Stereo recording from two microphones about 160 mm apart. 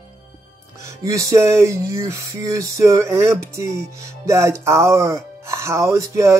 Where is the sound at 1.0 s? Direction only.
20° right (ahead or behind).